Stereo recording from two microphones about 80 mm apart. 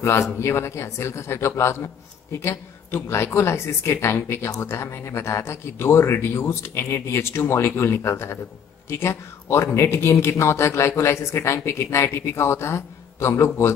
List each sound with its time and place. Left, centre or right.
0.4 s speech: left